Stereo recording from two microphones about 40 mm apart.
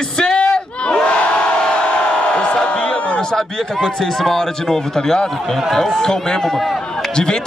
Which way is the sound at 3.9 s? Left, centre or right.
Centre.